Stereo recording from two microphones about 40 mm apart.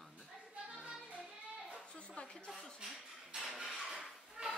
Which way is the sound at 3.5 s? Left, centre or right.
Centre.